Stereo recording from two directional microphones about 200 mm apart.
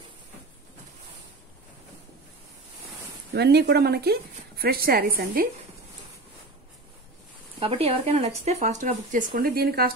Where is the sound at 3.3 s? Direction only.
55° right (ahead or behind).